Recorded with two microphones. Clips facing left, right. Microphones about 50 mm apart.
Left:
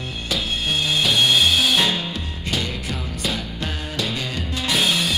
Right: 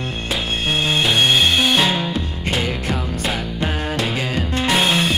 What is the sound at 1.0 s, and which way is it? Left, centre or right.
Music, centre.